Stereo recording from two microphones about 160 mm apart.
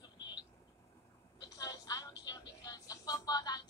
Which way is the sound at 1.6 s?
20° left (ahead or behind).